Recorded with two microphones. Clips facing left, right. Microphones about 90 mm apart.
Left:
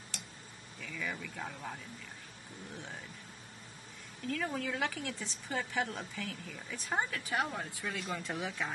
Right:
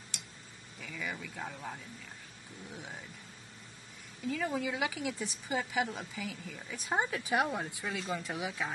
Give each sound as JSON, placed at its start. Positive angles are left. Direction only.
{"t": 0.7, "sound": "speech", "side_deg": -5}
{"t": 4.3, "sound": "a woman's voice", "side_deg": -5}
{"t": 6.9, "sound": "a woman's voice", "side_deg": -15}
{"t": 7.9, "sound": "speech", "side_deg": -5}